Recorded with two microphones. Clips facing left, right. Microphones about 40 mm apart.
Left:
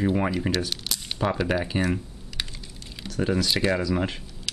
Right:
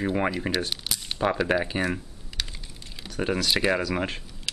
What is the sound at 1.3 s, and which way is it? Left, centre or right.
Speech, centre.